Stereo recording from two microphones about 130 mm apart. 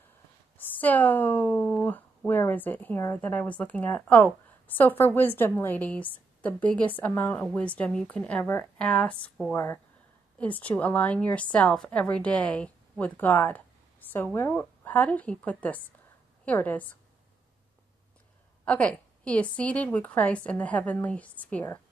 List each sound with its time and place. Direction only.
0.7 s speech: 15° left (ahead or behind)
18.7 s speech: 10° left (ahead or behind)